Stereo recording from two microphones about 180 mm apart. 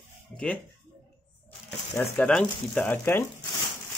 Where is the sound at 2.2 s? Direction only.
5° left (ahead or behind).